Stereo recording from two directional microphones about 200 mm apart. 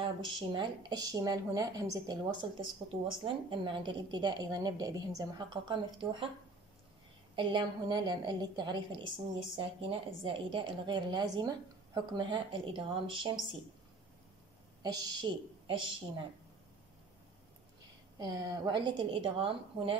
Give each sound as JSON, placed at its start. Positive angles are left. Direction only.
{"t": 0.0, "sound": "a woman's voice", "side_deg": -25}
{"t": 3.4, "sound": "a woman's voice", "side_deg": -25}
{"t": 7.3, "sound": "a woman's voice", "side_deg": -20}
{"t": 14.8, "sound": "a woman's voice", "side_deg": -20}
{"t": 18.2, "sound": "a woman's voice", "side_deg": -20}